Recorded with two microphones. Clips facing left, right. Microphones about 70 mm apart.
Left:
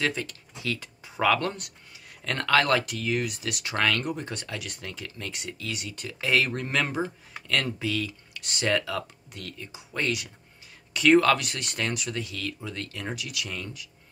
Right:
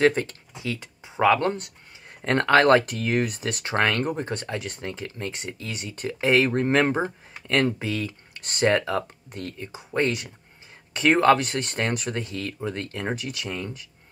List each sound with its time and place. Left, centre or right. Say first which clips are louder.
0.0 s speech: right 9 dB; right
0.6 s speech: right 1 dB; centre